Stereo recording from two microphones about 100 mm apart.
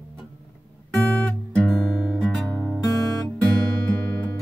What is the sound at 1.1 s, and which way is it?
Guitar, 15° left (ahead or behind).